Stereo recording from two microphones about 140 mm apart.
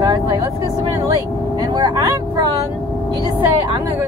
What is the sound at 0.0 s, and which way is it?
Vehicle, 30° right (ahead or behind).